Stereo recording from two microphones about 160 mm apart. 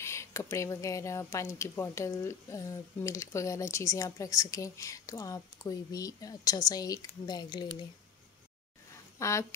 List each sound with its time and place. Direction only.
0.0 s speech: 15° left (ahead or behind)
9.2 s speech: 20° left (ahead or behind)